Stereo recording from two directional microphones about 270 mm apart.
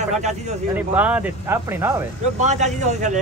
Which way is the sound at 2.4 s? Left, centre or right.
Right.